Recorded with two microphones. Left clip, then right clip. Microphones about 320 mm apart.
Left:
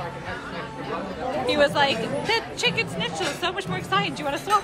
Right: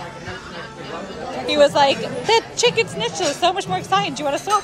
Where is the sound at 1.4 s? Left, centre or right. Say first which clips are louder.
Right 6 dB; centre.